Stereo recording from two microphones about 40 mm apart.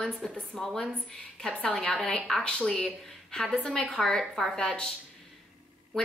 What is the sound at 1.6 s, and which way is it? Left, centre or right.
A woman's voice, left.